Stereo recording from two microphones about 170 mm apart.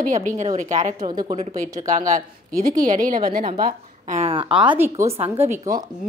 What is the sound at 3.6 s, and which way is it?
Speech, 40° right (ahead or behind).